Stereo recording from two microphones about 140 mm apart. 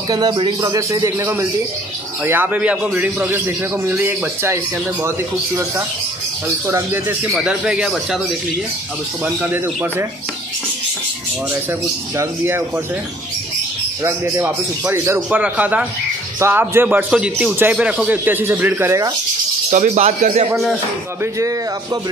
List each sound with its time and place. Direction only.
0.1 s a man's voice: 30° right (ahead or behind)
6.7 s a man's voice: 15° right (ahead or behind)
7.2 s speech: 5° right (ahead or behind)
9.2 s a man's voice: 10° right (ahead or behind)
12.2 s a man's voice: 15° right (ahead or behind)
14.0 s a man's voice: 20° right (ahead or behind)
19.7 s speech: 55° right (ahead or behind)
21.2 s a man's voice: 20° right (ahead or behind)